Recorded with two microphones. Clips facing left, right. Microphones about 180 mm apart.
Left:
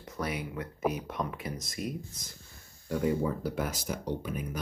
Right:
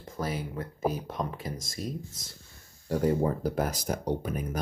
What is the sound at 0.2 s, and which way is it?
Speech, 40° right (ahead or behind).